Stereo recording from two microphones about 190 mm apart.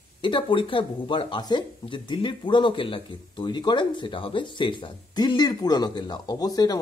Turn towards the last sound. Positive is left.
turn(degrees=20)  # may be behind; listen again after turning